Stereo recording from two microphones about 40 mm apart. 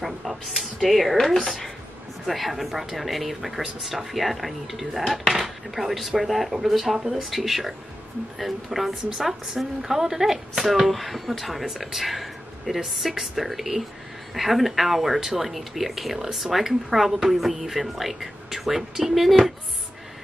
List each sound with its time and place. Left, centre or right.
0.0 s speech: centre
1.1 s speech: centre
2.2 s a woman's voice: centre
10.9 s speech: centre